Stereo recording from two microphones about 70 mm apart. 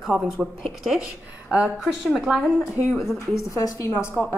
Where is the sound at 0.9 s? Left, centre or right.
Centre.